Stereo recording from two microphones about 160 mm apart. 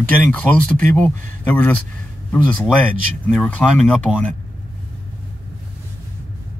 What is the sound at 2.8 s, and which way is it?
Speech, 10° left (ahead or behind).